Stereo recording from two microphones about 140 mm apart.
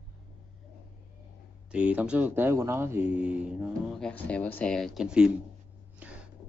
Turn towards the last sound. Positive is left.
turn(degrees=-10)  # may be behind; listen again after turning